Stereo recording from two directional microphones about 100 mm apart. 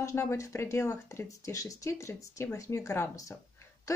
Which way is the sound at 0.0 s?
25° left (ahead or behind).